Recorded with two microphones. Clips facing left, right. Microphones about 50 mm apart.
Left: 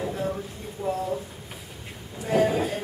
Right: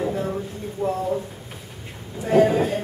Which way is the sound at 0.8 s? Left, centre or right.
Right.